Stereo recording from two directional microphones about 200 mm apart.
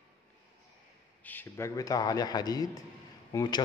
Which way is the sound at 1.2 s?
10° left (ahead or behind).